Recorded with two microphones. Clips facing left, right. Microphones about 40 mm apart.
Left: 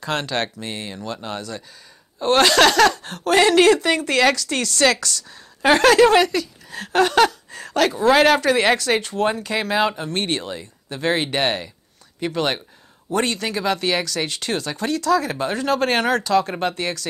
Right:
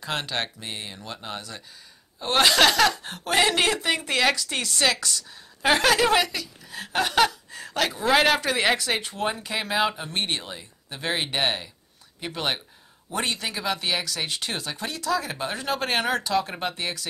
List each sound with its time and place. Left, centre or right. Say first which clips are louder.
0.0 s speech: left 5 dB; centre
5.6 s a woman's voice: left 7 dB; centre